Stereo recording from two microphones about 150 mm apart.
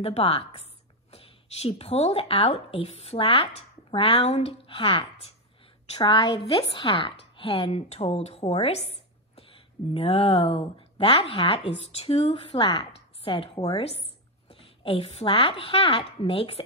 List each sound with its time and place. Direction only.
0.0 s speech: 40° left (ahead or behind)